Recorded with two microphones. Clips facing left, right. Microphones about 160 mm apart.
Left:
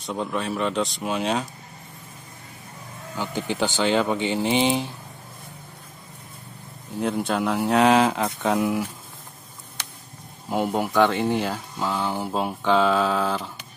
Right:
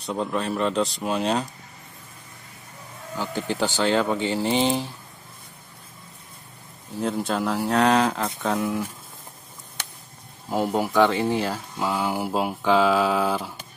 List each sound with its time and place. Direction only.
0.0 s speech: centre (ahead or behind)
3.5 s speech: centre (ahead or behind)
4.2 s speech: 15° left (ahead or behind)
7.0 s speech: centre (ahead or behind)
10.5 s speech: centre (ahead or behind)